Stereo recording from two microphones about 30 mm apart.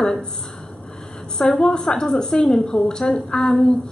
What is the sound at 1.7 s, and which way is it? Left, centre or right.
A woman's voice, left.